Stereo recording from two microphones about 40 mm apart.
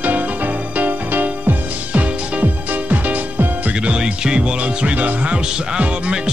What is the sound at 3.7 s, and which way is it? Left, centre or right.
Music, right.